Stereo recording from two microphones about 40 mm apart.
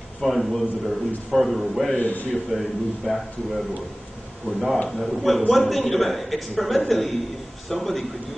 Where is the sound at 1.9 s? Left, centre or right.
Left.